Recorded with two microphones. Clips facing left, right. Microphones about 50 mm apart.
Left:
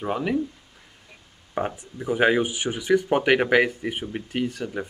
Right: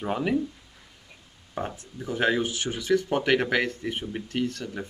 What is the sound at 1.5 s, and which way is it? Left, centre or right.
Speech, left.